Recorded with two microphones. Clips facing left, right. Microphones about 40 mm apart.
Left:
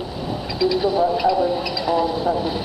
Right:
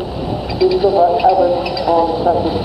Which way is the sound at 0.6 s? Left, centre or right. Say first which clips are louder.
Right 7 dB; centre.